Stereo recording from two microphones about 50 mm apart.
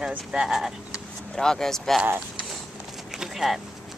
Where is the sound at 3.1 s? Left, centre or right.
Centre.